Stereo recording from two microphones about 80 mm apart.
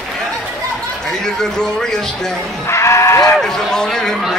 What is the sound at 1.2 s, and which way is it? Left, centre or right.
Speech, centre.